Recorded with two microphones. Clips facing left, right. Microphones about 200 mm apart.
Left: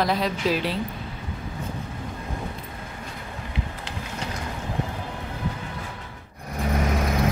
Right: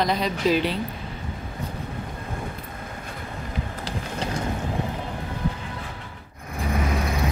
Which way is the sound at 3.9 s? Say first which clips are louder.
Right 4 dB; 35° right (ahead or behind).